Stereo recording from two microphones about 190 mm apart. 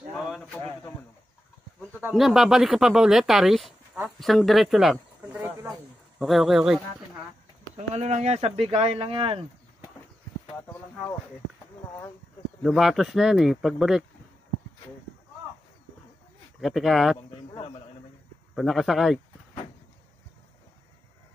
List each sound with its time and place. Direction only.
0.1 s a sound: centre (ahead or behind)
2.0 s speech: 5° right (ahead or behind)
7.7 s speech: 35° right (ahead or behind)
12.6 s speech: centre (ahead or behind)
16.6 s speech: centre (ahead or behind)
18.5 s speech: centre (ahead or behind)